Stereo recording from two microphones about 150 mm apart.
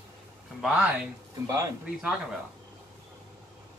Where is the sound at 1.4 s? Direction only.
20° right (ahead or behind).